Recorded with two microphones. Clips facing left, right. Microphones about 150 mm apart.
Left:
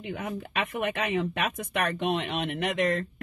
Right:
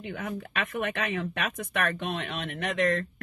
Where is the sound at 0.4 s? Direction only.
15° left (ahead or behind).